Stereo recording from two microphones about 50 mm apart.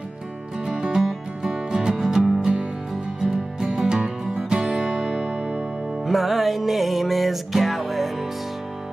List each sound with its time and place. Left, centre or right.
0.7 s music: centre
6.0 s music: centre